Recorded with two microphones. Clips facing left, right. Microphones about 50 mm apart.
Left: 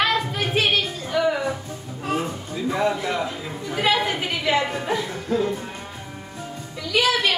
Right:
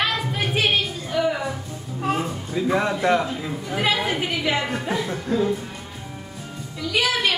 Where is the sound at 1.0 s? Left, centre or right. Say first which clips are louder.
Left 2 dB; centre.